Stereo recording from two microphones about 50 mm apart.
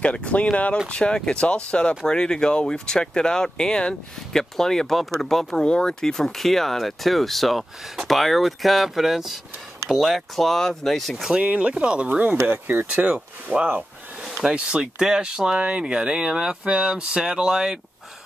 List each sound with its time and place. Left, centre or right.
0.0 s speech: left; by 5.7 s centre
5.7 s speech: centre
11.2 s speech: right
13.0 s speech: right